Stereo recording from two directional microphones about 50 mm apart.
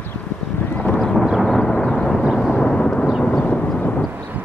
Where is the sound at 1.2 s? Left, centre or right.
Centre.